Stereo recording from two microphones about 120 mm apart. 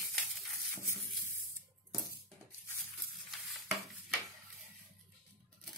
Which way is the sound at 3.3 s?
Centre (ahead or behind).